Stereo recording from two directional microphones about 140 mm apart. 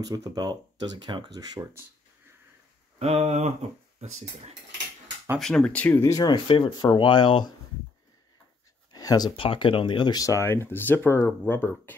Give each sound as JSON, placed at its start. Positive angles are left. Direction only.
{"t": 0.0, "sound": "speech", "side_deg": -25}
{"t": 3.0, "sound": "a sound", "side_deg": -50}
{"t": 5.4, "sound": "speech", "side_deg": 5}
{"t": 6.1, "sound": "speech", "side_deg": 30}
{"t": 8.9, "sound": "a sound", "side_deg": 25}
{"t": 9.4, "sound": "speech", "side_deg": 40}